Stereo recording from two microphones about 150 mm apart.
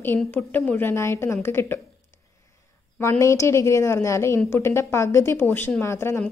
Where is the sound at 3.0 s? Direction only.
20° left (ahead or behind).